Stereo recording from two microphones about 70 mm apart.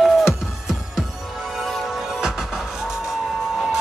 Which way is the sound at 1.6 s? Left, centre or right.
Centre.